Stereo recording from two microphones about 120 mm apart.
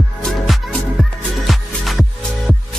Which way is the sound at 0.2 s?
Centre (ahead or behind).